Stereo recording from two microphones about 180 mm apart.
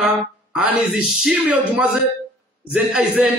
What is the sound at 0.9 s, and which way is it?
Speech, centre (ahead or behind).